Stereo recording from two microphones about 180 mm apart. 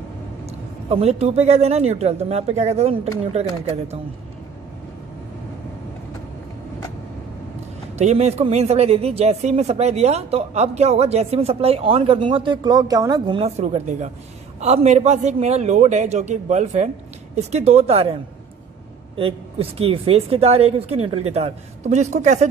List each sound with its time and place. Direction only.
0.8 s speech: 35° right (ahead or behind)
8.0 s speech: 40° right (ahead or behind)
19.1 s speech: 30° right (ahead or behind)